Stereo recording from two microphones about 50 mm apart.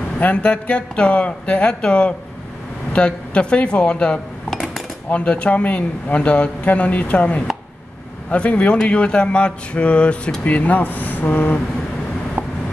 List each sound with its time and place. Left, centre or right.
0.2 s speech: left
4.5 s cutlery: centre
5.1 s speech: left